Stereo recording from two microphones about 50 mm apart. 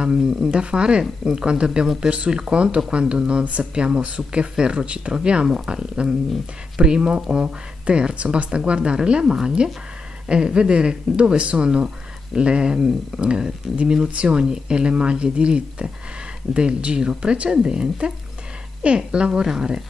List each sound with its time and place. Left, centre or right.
0.0 s speech: centre